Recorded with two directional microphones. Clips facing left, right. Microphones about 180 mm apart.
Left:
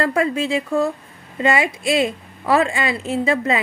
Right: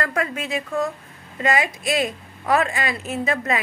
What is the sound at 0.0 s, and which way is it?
A woman's voice, 30° left (ahead or behind).